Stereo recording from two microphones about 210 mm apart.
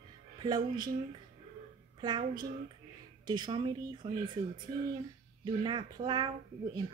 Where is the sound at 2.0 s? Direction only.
20° right (ahead or behind).